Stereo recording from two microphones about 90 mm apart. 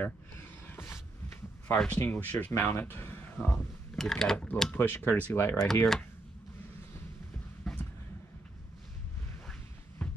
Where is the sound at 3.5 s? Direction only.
5° left (ahead or behind).